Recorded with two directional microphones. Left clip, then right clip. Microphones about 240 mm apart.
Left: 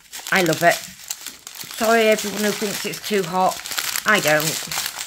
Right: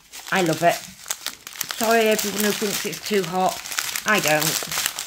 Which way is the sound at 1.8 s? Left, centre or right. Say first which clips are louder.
Left 2 dB; centre.